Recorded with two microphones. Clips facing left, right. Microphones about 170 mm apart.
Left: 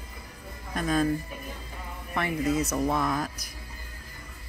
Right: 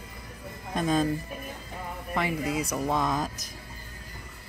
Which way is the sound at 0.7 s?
25° right (ahead or behind).